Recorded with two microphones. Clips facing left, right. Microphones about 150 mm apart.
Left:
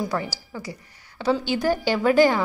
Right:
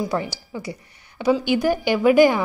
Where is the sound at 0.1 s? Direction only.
20° right (ahead or behind).